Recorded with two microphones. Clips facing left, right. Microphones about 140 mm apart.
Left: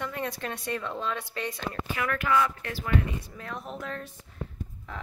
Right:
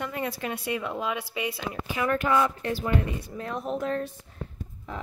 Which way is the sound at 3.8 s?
35° right (ahead or behind).